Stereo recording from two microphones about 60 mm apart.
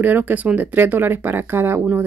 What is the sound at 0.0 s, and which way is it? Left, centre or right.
Speech, right.